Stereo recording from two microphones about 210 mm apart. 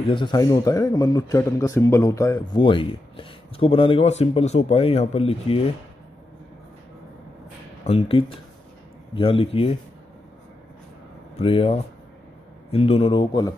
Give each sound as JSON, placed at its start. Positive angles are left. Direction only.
{"t": 0.1, "sound": "a man's voice", "side_deg": 20}
{"t": 7.8, "sound": "a man's voice", "side_deg": 30}
{"t": 11.3, "sound": "a man's voice", "side_deg": 25}